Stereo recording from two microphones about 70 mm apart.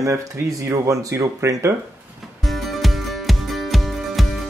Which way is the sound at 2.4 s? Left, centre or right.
Centre.